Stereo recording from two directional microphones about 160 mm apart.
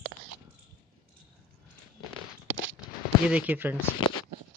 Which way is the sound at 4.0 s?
30° left (ahead or behind).